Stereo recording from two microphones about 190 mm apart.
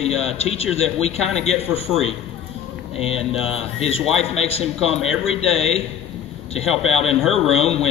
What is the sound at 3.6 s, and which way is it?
Speech, 30° left (ahead or behind).